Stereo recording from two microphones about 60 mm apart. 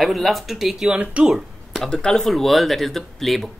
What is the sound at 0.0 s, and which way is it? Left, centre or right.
Speech, centre.